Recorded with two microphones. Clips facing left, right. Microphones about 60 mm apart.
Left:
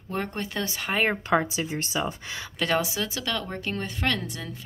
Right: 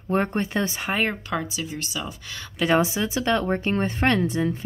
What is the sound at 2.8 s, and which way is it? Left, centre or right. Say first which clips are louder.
Speech: right 5 dB; right.